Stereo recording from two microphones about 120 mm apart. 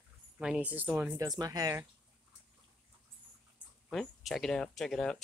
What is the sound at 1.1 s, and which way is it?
Speech, 35° right (ahead or behind).